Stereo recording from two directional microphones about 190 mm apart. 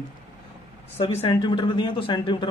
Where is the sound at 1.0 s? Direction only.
30° left (ahead or behind).